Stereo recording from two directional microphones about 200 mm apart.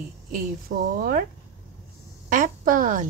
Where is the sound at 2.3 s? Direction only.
40° right (ahead or behind).